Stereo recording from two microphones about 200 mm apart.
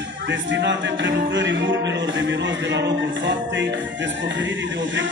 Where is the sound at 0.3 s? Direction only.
65° right (ahead or behind).